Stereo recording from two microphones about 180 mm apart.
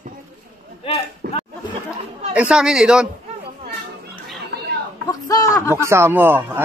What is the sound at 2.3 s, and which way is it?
Speech, 5° right (ahead or behind).